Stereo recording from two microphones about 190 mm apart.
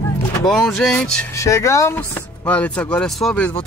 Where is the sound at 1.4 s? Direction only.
15° left (ahead or behind).